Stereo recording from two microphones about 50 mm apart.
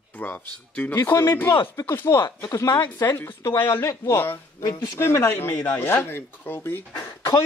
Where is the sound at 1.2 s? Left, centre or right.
Left.